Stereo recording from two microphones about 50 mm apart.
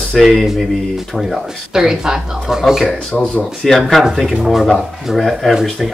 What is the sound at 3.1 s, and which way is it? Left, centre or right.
Speech, left.